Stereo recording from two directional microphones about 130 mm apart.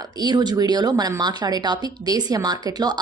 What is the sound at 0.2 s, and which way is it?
Speech, 35° right (ahead or behind).